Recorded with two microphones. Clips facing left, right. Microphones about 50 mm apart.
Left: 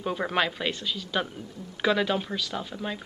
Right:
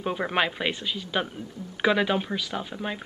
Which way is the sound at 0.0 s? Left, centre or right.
Centre.